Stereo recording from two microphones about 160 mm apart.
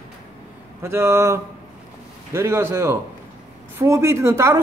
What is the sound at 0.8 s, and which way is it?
Speech, 15° right (ahead or behind).